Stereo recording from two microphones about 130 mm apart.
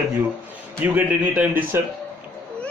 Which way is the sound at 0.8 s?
10° right (ahead or behind).